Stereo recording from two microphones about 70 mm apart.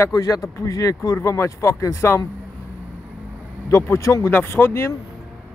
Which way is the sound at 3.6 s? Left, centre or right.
Left.